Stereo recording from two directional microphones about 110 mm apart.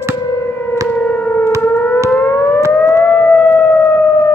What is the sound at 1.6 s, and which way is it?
Civil defense siren, 15° left (ahead or behind).